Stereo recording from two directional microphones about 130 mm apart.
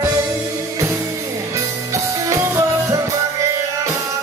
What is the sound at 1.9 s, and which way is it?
Music, 25° right (ahead or behind).